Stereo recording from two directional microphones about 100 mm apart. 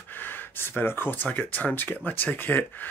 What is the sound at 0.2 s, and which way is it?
Speech, 20° left (ahead or behind).